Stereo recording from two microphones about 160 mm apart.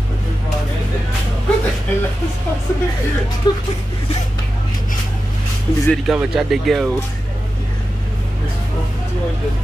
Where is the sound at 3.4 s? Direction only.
25° left (ahead or behind).